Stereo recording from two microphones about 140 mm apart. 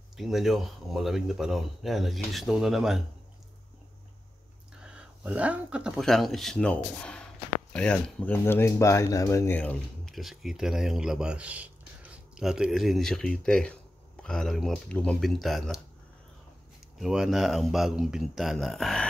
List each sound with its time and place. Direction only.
0.2 s speech: centre (ahead or behind)
4.8 s speech: 10° right (ahead or behind); by 9.6 s 20° left (ahead or behind)
9.6 s speech: 10° left (ahead or behind)
10.1 s speech: centre (ahead or behind)
17.0 s speech: 5° right (ahead or behind)